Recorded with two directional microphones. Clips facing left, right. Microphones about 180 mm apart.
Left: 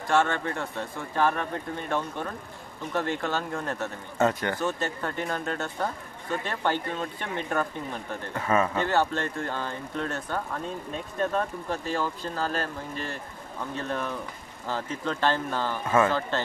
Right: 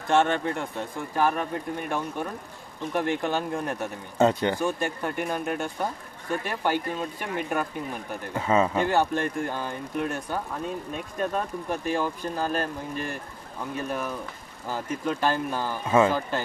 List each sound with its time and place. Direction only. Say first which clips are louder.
0.1 s speech: right 2 dB; 20° right (ahead or behind)